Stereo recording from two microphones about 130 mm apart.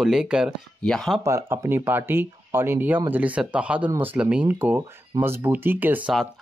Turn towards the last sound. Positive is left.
turn(degrees=-10)  # may be behind; listen again after turning